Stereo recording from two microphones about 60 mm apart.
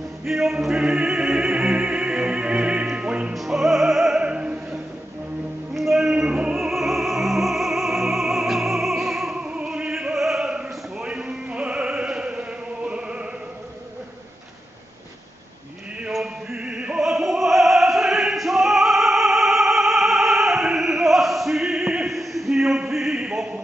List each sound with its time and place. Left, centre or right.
0.2 s opera: centre
3.0 s music: centre
3.3 s music: centre
4.2 s opera: centre
5.8 s music: centre
6.6 s music: centre
9.4 s opera: centre
10.5 s a sound: centre
16.1 s music: centre
16.6 s opera: centre